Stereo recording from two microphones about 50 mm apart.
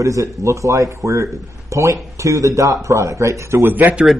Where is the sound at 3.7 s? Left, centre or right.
Right.